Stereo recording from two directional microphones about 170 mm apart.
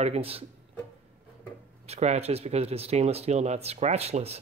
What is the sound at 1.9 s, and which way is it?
Speech, 40° right (ahead or behind).